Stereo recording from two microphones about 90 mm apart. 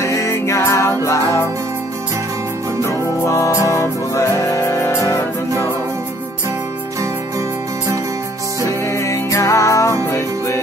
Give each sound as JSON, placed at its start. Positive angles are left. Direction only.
{"t": 0.0, "sound": "music", "side_deg": 35}
{"t": 2.8, "sound": "music", "side_deg": 35}
{"t": 8.6, "sound": "music", "side_deg": 35}